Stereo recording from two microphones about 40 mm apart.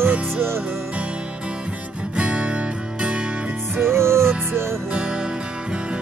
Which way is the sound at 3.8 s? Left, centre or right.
Right.